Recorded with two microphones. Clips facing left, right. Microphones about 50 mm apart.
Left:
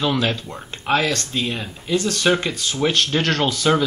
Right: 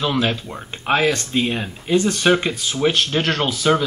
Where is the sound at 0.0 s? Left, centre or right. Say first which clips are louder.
Even; centre.